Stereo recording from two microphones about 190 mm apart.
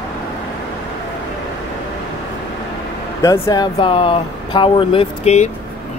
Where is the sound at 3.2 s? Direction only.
15° left (ahead or behind); by 5.5 s 35° left (ahead or behind).